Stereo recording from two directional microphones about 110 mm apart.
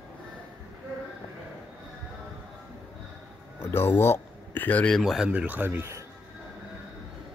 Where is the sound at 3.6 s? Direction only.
20° left (ahead or behind).